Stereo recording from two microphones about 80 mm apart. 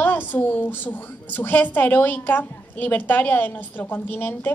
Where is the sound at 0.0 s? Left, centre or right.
Left.